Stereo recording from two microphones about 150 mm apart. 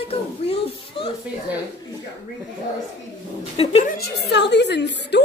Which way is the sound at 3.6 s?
40° left (ahead or behind).